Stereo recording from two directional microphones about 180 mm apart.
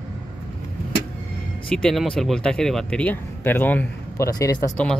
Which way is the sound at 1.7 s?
5° left (ahead or behind).